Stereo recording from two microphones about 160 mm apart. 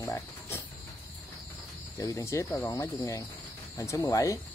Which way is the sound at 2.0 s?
20° left (ahead or behind).